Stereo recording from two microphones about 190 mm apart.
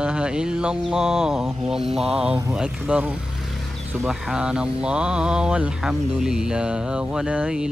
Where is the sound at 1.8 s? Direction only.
35° right (ahead or behind).